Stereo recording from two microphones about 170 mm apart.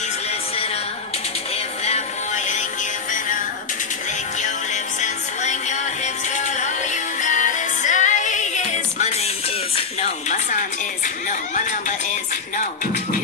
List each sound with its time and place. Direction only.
1.9 s music: 45° left (ahead or behind)
5.0 s music: 45° left (ahead or behind)
12.5 s music: 50° left (ahead or behind)